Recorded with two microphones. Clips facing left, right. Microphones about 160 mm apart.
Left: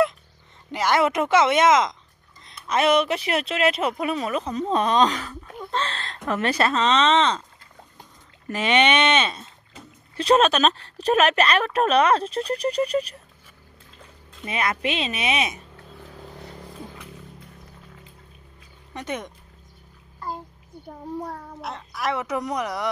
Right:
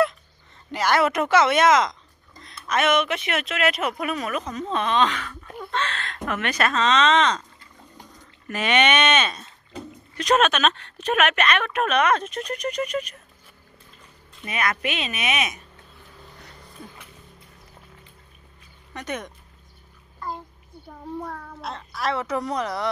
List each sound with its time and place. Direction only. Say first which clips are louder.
0.7 s a woman's voice: even; 20° left (ahead or behind); by 5.3 s 40° left (ahead or behind)
5.7 s a sound: even; 35° left (ahead or behind)
6.2 s speech: left 2 dB; 30° left (ahead or behind)
8.5 s a woman's voice: left 1 dB; 25° left (ahead or behind)
14.4 s speech: left 1 dB; 25° left (ahead or behind)
18.9 s speech: left 1 dB; 25° left (ahead or behind)
21.3 s speech: even; 20° left (ahead or behind)